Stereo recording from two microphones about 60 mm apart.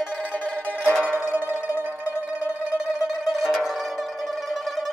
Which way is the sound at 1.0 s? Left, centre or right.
Right.